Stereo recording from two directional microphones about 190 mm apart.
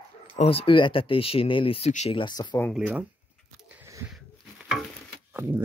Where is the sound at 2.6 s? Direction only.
Centre (ahead or behind).